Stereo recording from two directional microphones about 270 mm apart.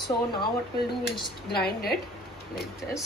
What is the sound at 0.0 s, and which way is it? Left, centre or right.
Speech, centre.